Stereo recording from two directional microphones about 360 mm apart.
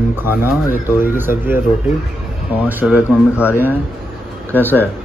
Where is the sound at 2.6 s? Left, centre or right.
Centre.